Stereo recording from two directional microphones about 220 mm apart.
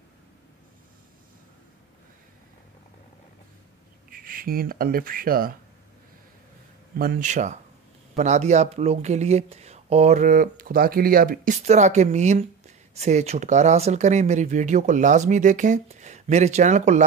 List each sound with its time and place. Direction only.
4.1 s speech: 40° right (ahead or behind)
7.0 s speech: 40° right (ahead or behind)